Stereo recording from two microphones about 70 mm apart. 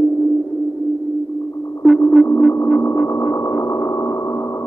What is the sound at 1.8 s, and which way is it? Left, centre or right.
Sonar, centre.